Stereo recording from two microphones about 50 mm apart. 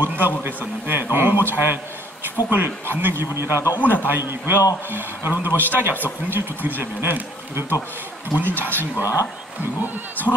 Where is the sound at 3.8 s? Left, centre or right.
Left.